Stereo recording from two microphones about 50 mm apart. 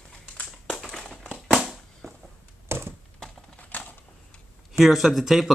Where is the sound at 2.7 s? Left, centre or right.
Right.